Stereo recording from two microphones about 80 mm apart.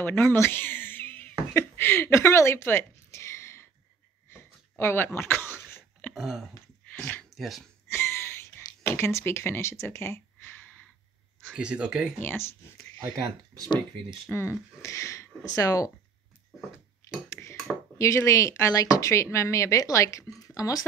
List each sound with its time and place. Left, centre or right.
0.0 s speech: left
4.3 s a sound: left
6.1 s speech: centre
7.0 s a sound: centre
7.3 s speech: centre
7.9 s a sound: left
11.5 s speech: centre
12.2 s speech: left
13.0 s speech: right
14.3 s speech: centre
14.8 s speech: left
17.3 s dishes: left
17.9 s speech: left